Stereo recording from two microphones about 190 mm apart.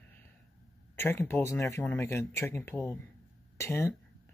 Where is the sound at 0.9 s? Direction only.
10° left (ahead or behind).